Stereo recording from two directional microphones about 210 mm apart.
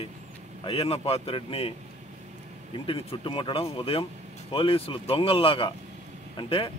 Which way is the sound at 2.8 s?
25° left (ahead or behind).